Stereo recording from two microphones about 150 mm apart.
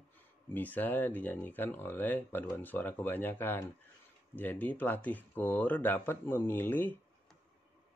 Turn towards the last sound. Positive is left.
turn(degrees=15)  # may be behind; listen again after turning